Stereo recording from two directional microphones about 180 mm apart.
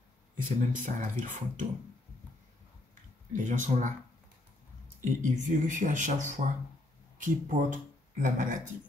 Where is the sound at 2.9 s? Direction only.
45° right (ahead or behind).